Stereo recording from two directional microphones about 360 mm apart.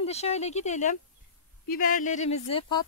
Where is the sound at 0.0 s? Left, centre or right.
Centre.